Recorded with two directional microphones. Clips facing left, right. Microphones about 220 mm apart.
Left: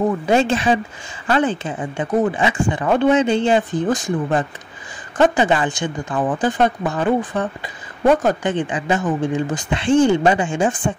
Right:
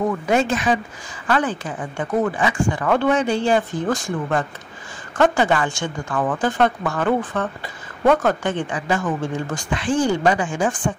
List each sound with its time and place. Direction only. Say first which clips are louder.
0.0 s speech: left 3 dB; 30° left (ahead or behind)